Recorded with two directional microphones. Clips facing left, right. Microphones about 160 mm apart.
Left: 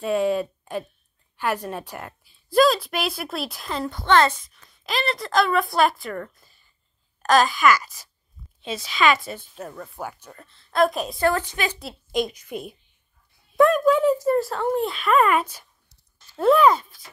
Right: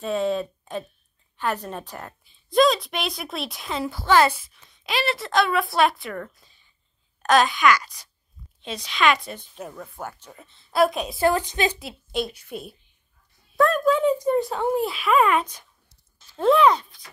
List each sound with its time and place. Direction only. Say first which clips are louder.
0.0 s a woman's voice: left 2 dB; 10° left (ahead or behind)
10.0 s speech: left 2 dB; 10° left (ahead or behind)
10.3 s a woman's voice: right 1 dB; centre (ahead or behind)
11.1 s a woman's voice: right 2 dB; 15° right (ahead or behind)
12.1 s a woman's voice: left 3 dB; 10° left (ahead or behind)
13.7 s a woman's voice: left 2 dB; 10° left (ahead or behind)